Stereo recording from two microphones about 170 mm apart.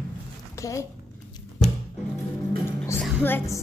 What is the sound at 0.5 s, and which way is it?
Speech, 20° left (ahead or behind).